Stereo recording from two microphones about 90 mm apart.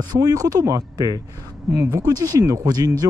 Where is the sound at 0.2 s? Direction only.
45° right (ahead or behind).